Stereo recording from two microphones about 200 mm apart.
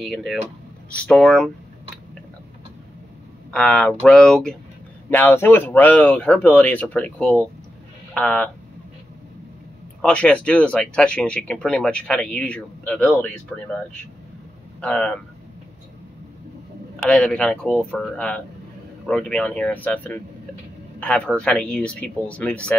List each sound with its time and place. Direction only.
0.0 s speech: centre (ahead or behind)
3.5 s speech: 5° left (ahead or behind)
10.0 s speech: 5° left (ahead or behind)
14.8 s speech: 5° left (ahead or behind)
17.0 s speech: 5° left (ahead or behind)